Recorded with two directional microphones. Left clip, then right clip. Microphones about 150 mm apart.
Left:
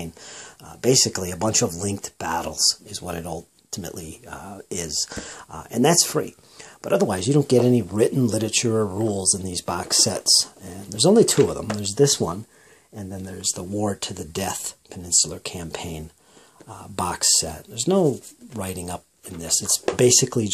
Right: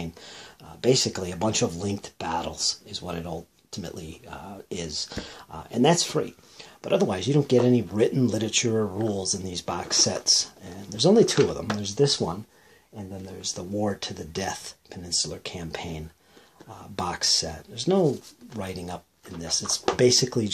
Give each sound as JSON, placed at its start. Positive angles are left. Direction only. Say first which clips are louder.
{"t": 0.0, "sound": "speech", "louder": "left 2 dB", "side_deg": 35}